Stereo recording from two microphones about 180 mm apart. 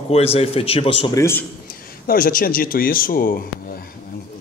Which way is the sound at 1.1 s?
15° left (ahead or behind).